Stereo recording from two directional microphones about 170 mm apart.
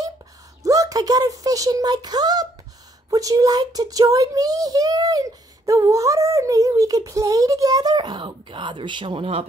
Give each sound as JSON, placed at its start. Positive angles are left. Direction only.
{"t": 0.7, "sound": "a child's voice", "side_deg": -20}